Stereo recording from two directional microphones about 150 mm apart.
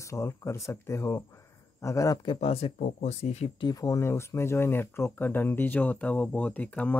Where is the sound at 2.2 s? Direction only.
40° left (ahead or behind).